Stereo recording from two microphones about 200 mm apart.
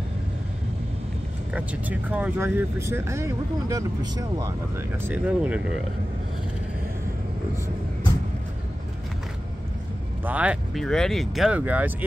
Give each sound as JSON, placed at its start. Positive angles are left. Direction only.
{"t": 1.5, "sound": "speech", "side_deg": -5}
{"t": 10.2, "sound": "speech", "side_deg": -5}